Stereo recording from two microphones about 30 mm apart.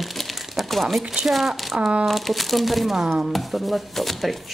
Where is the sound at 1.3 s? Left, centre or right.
Centre.